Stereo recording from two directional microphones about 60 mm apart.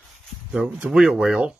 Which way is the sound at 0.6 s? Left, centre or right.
Centre.